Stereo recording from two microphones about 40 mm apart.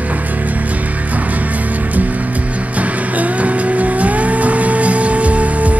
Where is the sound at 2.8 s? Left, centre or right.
Right.